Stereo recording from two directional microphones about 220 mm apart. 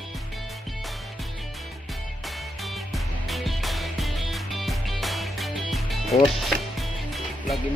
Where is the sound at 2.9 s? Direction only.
Centre (ahead or behind).